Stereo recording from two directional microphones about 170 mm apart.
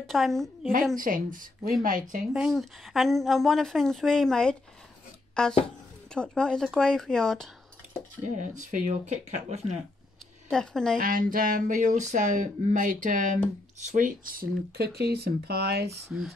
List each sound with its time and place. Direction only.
0.0 s a woman's voice: centre (ahead or behind)
0.9 s speech: 55° right (ahead or behind)
2.3 s a woman's voice: centre (ahead or behind)
8.4 s speech: 50° right (ahead or behind)
10.5 s a woman's voice: 5° left (ahead or behind)
11.0 s speech: 50° right (ahead or behind); by 15.9 s 70° right (ahead or behind)